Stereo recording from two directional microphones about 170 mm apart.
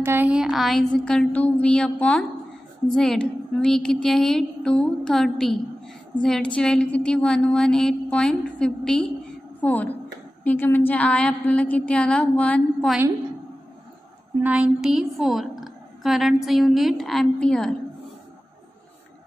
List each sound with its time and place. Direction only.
0.0 s a woman's voice: 10° right (ahead or behind); by 12.9 s 10° left (ahead or behind)
14.4 s a woman's voice: 10° right (ahead or behind)